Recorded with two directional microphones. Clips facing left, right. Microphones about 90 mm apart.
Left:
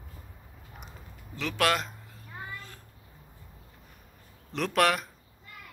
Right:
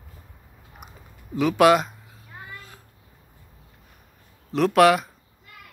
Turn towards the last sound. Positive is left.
turn(degrees=-5)  # may be behind; listen again after turning